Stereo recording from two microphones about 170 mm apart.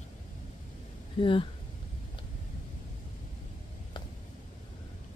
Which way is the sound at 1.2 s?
30° left (ahead or behind).